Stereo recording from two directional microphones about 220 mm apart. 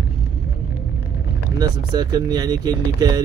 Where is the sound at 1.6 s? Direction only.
20° right (ahead or behind).